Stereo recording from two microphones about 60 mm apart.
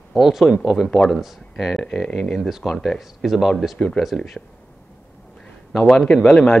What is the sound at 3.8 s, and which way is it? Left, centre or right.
Speech, centre.